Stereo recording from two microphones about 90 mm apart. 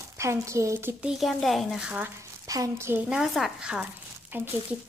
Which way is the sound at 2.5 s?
40° right (ahead or behind).